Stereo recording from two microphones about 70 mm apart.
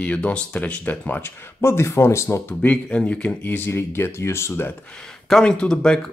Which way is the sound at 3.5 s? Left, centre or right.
Left.